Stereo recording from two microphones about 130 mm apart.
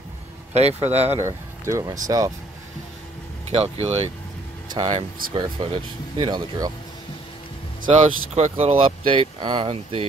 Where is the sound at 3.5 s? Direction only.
50° right (ahead or behind); by 5.3 s 75° right (ahead or behind).